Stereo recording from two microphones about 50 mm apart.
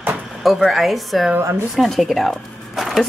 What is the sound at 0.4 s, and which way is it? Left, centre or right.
Speech, centre.